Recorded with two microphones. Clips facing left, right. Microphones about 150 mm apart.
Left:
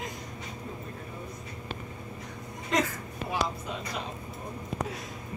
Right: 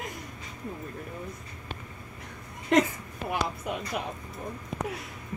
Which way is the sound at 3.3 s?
60° right (ahead or behind).